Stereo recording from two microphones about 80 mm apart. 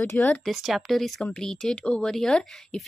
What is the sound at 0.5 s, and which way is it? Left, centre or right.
A woman's voice, centre.